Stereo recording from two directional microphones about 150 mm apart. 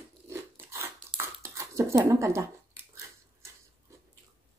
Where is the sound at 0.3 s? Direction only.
15° right (ahead or behind).